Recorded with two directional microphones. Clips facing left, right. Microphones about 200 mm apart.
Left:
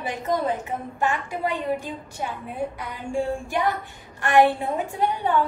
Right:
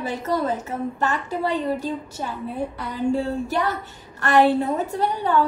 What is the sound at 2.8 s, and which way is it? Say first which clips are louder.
Speech: right 10 dB; 40° right (ahead or behind).